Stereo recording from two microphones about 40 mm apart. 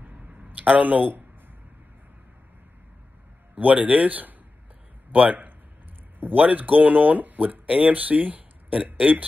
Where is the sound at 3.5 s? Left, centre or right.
Right.